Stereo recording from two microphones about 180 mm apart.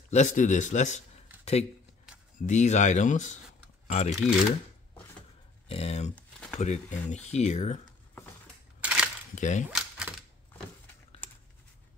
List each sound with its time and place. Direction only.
0.1 s speech: 40° left (ahead or behind)
5.7 s speech: 35° left (ahead or behind)
6.1 s a sound: 5° left (ahead or behind)
6.6 s speech: 40° left (ahead or behind)
8.8 s a sound: 5° right (ahead or behind)
9.3 s speech: 40° left (ahead or behind)
9.8 s typewriter: 5° right (ahead or behind)